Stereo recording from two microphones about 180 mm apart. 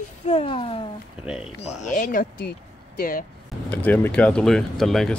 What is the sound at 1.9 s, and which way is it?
Speech, 45° left (ahead or behind).